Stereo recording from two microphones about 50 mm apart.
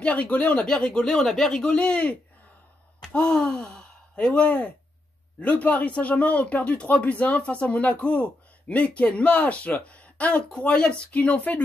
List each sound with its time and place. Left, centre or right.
0.0 s speech: left
0.7 s speech: centre